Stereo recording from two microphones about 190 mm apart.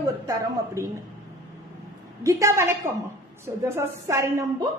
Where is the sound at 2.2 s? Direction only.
15° right (ahead or behind).